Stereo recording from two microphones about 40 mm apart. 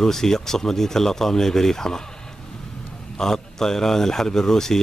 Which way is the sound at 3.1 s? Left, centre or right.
Centre.